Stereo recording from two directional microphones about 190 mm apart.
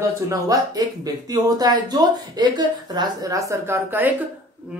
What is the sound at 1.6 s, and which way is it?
A woman's voice, 20° right (ahead or behind).